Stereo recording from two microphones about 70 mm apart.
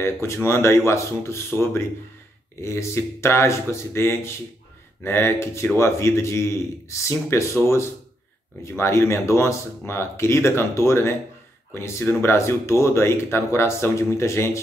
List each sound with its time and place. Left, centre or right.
0.0 s speech: left